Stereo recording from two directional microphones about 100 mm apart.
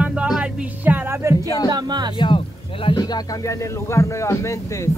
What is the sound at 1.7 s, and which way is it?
Speech, 45° right (ahead or behind).